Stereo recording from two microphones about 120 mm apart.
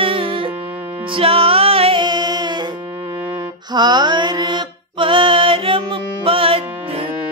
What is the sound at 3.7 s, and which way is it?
Mantra, 35° right (ahead or behind).